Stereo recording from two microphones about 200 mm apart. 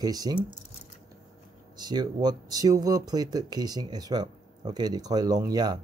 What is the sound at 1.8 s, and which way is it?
Speech, 20° right (ahead or behind).